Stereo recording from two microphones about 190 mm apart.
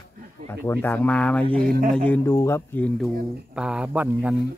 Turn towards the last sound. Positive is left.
turn(degrees=-5)  # may be behind; listen again after turning